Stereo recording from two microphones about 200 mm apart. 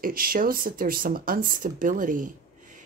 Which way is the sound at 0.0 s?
45° right (ahead or behind).